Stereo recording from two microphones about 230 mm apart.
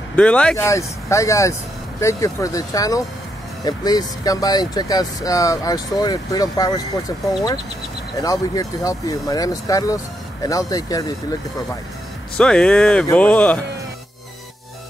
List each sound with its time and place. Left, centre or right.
0.1 s speech: centre
12.4 s speech: centre